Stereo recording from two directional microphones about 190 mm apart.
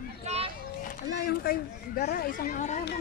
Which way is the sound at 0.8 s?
50° left (ahead or behind).